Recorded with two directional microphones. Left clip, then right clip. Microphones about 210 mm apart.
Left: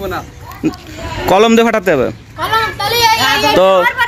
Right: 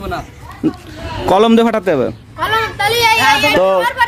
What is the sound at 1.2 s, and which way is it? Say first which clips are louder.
Children playing: left 1 dB; 10° right (ahead or behind).